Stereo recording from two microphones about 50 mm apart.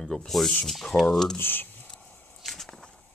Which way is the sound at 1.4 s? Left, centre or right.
Left.